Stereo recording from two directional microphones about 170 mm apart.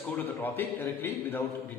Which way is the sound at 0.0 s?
10° left (ahead or behind).